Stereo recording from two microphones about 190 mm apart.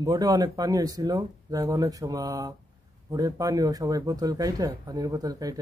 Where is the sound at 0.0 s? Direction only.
20° right (ahead or behind).